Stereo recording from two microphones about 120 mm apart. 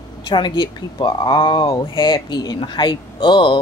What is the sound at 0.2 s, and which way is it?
Speech, 40° left (ahead or behind).